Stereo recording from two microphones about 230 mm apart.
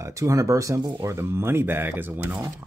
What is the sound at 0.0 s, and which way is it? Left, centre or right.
Speech, centre.